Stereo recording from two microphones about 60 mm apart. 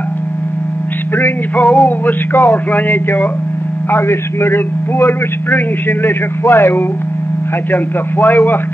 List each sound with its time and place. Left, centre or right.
1.6 s a sound: centre
2.5 s a man's voice: left
3.9 s a man's voice: left